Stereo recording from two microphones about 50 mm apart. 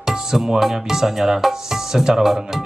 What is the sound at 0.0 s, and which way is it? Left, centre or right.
Speech, centre.